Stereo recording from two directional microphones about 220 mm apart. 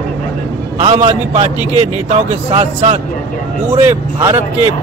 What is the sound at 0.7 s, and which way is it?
Speech, 30° right (ahead or behind).